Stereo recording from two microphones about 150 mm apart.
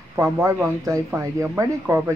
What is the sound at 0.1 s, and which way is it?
Speech, 15° right (ahead or behind).